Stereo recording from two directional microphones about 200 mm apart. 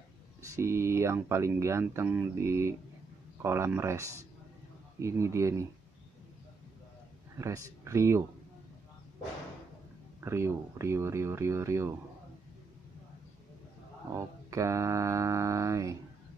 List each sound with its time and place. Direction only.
0.6 s speech: 15° right (ahead or behind)
7.3 s speech: 15° right (ahead or behind)
10.2 s speech: 15° right (ahead or behind)
14.1 s speech: 15° right (ahead or behind)